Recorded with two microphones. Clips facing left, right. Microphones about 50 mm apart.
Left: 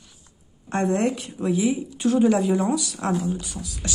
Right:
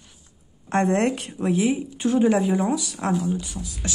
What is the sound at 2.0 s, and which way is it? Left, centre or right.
Speech, centre.